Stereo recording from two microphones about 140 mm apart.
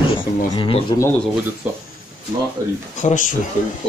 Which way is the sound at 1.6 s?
10° right (ahead or behind).